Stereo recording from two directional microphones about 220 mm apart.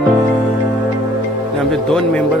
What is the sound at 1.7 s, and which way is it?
Speech, 5° left (ahead or behind).